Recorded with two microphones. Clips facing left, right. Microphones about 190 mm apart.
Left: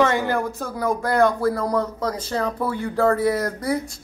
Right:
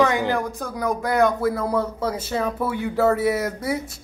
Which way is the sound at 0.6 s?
Centre (ahead or behind).